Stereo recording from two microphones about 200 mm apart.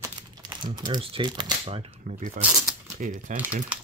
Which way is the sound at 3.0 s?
40° right (ahead or behind).